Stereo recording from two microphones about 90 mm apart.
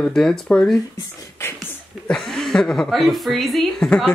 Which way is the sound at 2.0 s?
5° left (ahead or behind).